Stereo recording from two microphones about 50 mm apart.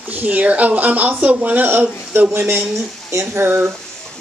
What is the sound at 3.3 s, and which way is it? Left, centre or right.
Speech, right.